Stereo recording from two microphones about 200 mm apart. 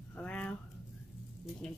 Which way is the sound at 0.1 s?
5° left (ahead or behind).